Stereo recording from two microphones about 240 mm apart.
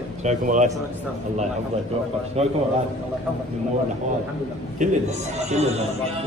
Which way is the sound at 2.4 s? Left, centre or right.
Right.